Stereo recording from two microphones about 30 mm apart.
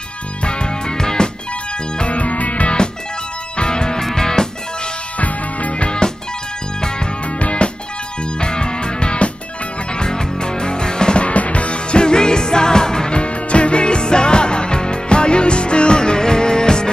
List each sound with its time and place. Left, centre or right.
0.4 s music: left
2.0 s music: left
3.5 s music: left
5.2 s music: left
5.8 s music: left
7.3 s music: left
8.4 s music: left
11.2 s music: left
13.1 s music: left